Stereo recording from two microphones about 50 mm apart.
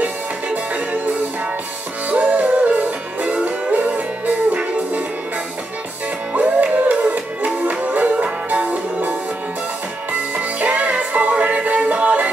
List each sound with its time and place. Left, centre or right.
2.0 s music: right
6.3 s music: right
10.3 s music: right